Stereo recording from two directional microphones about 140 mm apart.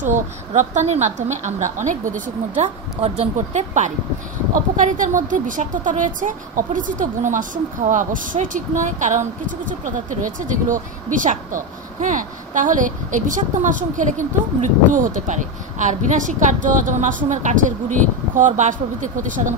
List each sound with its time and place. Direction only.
0.6 s a woman's voice: 55° right (ahead or behind)